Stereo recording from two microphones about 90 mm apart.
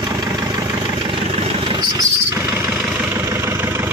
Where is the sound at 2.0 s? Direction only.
35° right (ahead or behind).